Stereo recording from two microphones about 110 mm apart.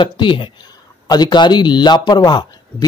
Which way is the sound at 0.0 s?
50° left (ahead or behind).